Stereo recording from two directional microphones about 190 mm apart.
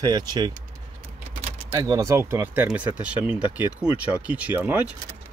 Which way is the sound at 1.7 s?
20° right (ahead or behind).